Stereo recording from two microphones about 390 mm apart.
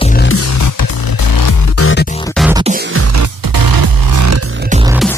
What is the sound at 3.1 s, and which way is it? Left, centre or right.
Music, right.